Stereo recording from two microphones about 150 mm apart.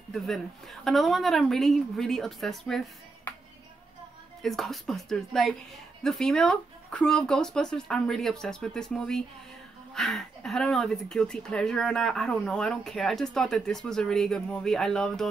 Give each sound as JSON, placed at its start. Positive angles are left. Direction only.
{"t": 0.1, "sound": "speech", "side_deg": 0}
{"t": 4.4, "sound": "speech", "side_deg": 0}